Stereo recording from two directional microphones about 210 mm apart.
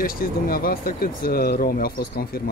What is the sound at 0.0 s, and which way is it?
Speech, 45° left (ahead or behind).